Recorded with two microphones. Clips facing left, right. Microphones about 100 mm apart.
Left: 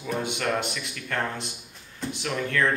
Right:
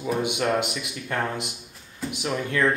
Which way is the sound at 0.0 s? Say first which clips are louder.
Right 4 dB; 20° right (ahead or behind).